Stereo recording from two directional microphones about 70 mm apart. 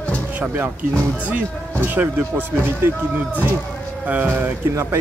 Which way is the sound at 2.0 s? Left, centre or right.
Right.